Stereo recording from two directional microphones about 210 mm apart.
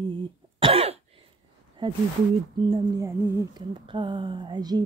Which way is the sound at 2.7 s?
20° right (ahead or behind).